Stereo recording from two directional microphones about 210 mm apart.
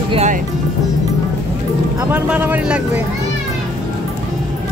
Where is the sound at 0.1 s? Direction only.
30° right (ahead or behind).